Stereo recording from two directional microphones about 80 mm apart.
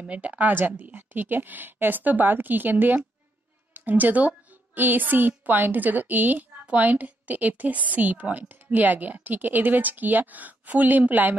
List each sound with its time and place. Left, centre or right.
0.0 s a woman's voice: centre